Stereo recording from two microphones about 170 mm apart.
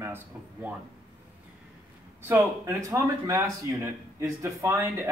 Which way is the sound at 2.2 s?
15° right (ahead or behind).